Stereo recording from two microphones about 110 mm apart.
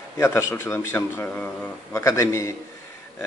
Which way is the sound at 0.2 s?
20° left (ahead or behind).